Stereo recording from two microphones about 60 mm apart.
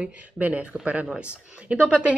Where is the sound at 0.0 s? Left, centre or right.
Right.